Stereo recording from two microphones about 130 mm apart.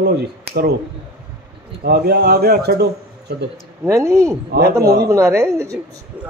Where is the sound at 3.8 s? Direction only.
25° right (ahead or behind).